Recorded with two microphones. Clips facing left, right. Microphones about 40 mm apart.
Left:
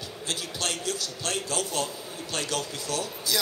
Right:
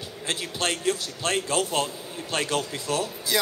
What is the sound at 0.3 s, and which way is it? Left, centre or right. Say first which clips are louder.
A man's voice: right 4 dB; right.